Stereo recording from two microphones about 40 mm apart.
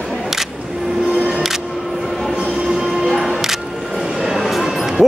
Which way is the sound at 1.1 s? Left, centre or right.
Right.